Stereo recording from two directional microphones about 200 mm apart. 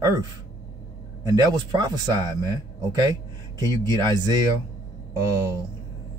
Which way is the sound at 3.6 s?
20° right (ahead or behind).